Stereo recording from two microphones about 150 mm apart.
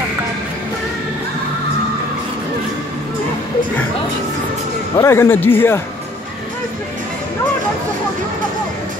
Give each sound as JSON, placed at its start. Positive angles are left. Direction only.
{"t": 4.9, "sound": "speech", "side_deg": 15}